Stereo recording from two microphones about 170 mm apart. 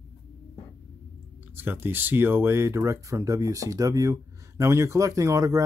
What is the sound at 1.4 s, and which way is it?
Speech, 10° right (ahead or behind).